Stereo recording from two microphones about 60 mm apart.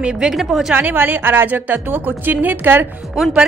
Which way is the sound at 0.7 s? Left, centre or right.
Right.